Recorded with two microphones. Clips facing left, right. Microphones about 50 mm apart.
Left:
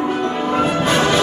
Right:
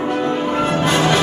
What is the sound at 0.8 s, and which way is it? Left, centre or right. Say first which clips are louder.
Music: right 1 dB; centre.